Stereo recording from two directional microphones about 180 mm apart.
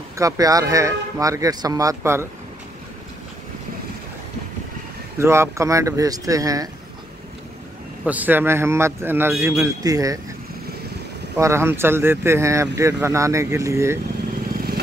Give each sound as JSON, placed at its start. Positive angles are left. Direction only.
{"t": 0.2, "sound": "speech", "side_deg": -20}
{"t": 5.2, "sound": "speech", "side_deg": -15}
{"t": 8.0, "sound": "speech", "side_deg": -10}
{"t": 11.3, "sound": "speech", "side_deg": -15}